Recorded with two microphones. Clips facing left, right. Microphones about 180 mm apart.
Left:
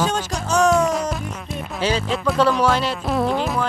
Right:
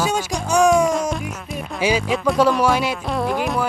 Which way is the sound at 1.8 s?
10° right (ahead or behind).